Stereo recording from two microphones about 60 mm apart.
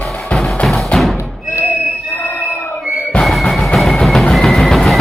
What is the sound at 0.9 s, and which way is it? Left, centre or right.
Music, left.